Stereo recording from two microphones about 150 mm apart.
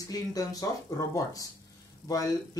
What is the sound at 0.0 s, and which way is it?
Speech, 25° left (ahead or behind).